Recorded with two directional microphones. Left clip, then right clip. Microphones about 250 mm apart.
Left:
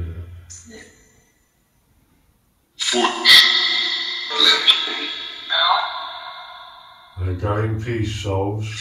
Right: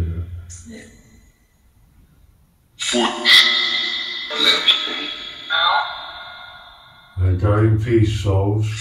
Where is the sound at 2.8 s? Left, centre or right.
Centre.